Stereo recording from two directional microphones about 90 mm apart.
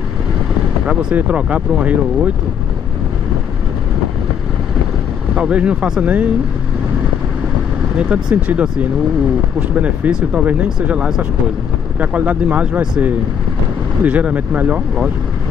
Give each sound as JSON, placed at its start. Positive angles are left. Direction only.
{"t": 1.1, "sound": "speech", "side_deg": -15}
{"t": 5.3, "sound": "speech", "side_deg": -15}
{"t": 8.0, "sound": "speech", "side_deg": -10}